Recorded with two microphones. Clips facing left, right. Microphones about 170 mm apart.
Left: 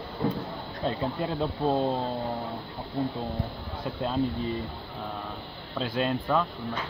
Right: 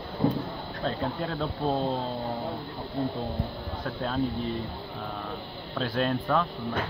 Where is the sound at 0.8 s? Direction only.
10° left (ahead or behind).